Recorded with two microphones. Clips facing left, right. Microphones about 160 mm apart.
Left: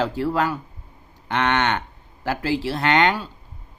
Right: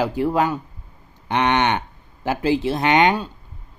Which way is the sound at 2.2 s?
20° right (ahead or behind).